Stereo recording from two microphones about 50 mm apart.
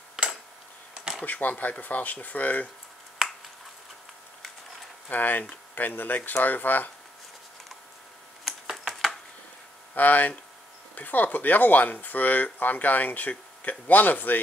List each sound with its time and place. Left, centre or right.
0.1 s a sound: centre
1.2 s speech: left
5.1 s speech: left
8.5 s computer keyboard: centre
9.9 s speech: left